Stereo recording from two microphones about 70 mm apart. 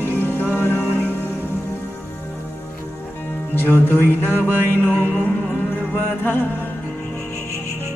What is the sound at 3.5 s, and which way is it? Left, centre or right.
Speech, left.